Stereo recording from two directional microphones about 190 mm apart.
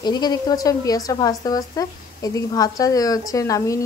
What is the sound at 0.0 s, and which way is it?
Speech, 20° left (ahead or behind).